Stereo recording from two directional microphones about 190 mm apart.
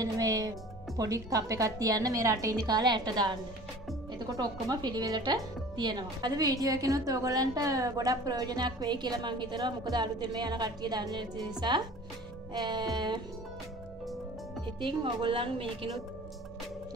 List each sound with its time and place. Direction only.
0.0 s a woman's voice: 20° right (ahead or behind)
14.8 s a woman's voice: 25° right (ahead or behind)